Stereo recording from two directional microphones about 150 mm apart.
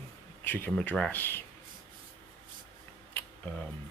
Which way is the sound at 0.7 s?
5° left (ahead or behind).